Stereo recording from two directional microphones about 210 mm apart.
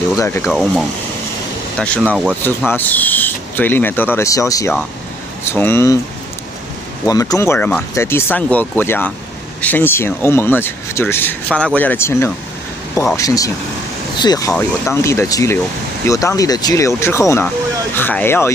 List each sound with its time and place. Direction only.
0.2 s speech: 15° left (ahead or behind)
0.5 s speech: centre (ahead or behind)
7.1 s speech: 15° left (ahead or behind)